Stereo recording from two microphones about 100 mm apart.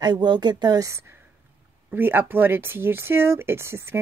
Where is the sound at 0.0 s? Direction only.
50° right (ahead or behind).